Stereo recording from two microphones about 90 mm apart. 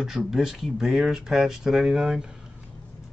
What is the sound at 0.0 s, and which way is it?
Speech, 5° right (ahead or behind).